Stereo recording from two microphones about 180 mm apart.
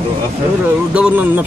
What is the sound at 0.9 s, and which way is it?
Speech, 10° right (ahead or behind).